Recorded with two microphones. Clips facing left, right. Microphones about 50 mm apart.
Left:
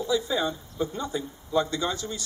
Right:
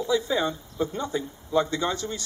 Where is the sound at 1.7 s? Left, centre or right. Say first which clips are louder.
Right 2 dB; right.